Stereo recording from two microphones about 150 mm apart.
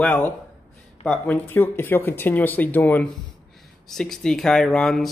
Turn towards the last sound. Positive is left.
turn(degrees=5)  # may be behind; listen again after turning